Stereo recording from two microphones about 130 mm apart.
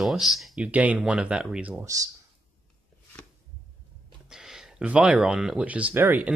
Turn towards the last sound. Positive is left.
turn(degrees=-15)  # may be behind; listen again after turning